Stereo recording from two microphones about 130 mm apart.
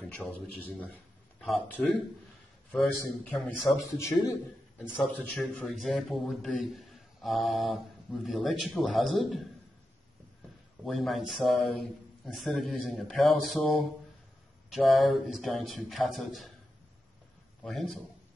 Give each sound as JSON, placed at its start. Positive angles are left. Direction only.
{"t": 0.0, "sound": "a man's voice", "side_deg": 10}
{"t": 4.7, "sound": "a man's voice", "side_deg": 10}
{"t": 10.9, "sound": "a man's voice", "side_deg": 0}
{"t": 17.6, "sound": "a man's voice", "side_deg": 0}